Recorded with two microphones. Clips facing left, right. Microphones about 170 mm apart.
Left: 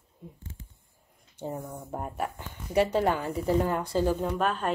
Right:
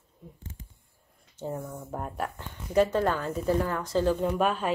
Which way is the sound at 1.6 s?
10° left (ahead or behind).